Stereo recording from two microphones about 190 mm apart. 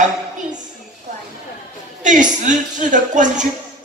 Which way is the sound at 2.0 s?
40° right (ahead or behind).